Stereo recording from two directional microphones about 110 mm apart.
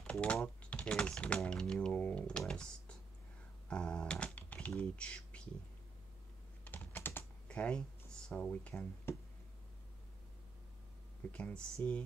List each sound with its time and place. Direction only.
0.0 s speech: 10° left (ahead or behind)
3.6 s typing: 10° left (ahead or behind)
6.6 s typing: 15° left (ahead or behind)
8.4 s speech: 15° left (ahead or behind)
11.3 s speech: 10° left (ahead or behind)